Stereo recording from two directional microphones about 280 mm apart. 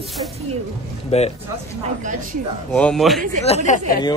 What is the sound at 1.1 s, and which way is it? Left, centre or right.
Speech, left.